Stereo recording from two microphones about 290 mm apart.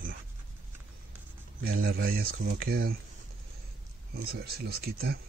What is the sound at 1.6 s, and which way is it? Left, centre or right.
Speech, right.